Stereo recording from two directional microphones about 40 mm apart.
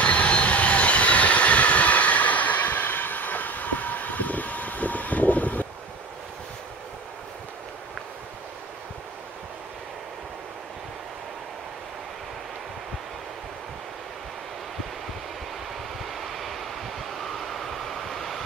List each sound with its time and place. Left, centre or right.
0.0 s train: left
16.0 s vehicle: centre